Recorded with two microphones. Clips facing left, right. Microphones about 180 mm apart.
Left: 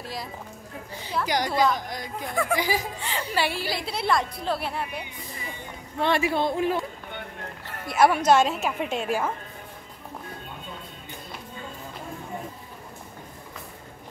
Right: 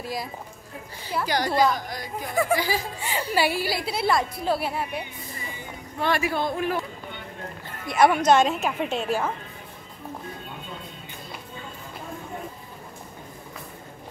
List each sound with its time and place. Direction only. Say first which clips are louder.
0.0 s speech: right 4 dB; 10° right (ahead or behind)
1.2 s a woman's voice: right 1 dB; 15° left (ahead or behind)
1.5 s a woman's voice: right 3 dB; 5° right (ahead or behind)
2.6 s a woman's voice: even; 15° left (ahead or behind)
3.0 s a woman's voice: right 3 dB; 10° right (ahead or behind)
5.9 s speech: left 1 dB; 25° left (ahead or behind)
7.1 s a sound: even; 55° left (ahead or behind)
7.9 s a woman's voice: right 1 dB; 5° left (ahead or behind)